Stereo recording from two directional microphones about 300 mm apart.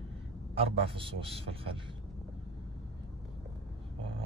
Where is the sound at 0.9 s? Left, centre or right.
Centre.